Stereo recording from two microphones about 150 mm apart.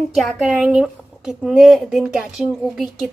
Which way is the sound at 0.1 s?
5° right (ahead or behind).